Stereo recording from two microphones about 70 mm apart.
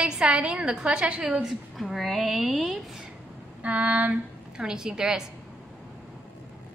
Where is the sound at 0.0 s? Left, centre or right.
Centre.